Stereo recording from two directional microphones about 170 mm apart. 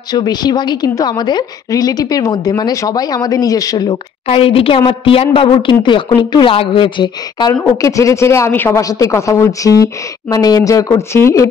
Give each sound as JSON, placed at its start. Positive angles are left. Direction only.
{"t": 0.1, "sound": "a woman's voice", "side_deg": 25}
{"t": 4.3, "sound": "a woman's voice", "side_deg": 35}